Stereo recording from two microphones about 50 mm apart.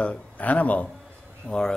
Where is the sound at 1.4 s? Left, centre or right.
Centre.